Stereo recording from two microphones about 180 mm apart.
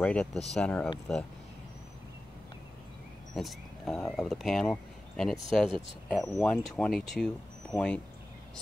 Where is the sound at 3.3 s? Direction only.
Centre (ahead or behind).